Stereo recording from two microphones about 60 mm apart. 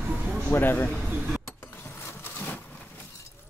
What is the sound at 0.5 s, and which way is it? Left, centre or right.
Speech, left.